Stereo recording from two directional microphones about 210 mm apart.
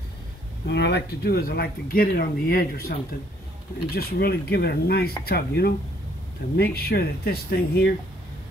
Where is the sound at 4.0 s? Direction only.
50° left (ahead or behind).